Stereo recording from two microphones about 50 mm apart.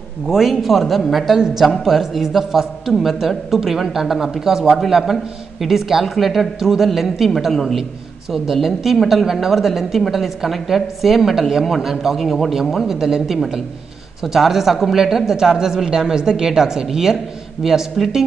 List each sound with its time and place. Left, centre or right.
0.3 s a man's voice: centre